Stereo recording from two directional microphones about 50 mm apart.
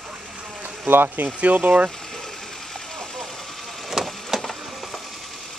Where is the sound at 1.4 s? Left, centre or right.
Right.